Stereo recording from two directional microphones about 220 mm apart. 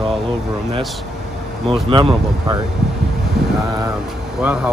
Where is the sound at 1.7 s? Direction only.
25° right (ahead or behind).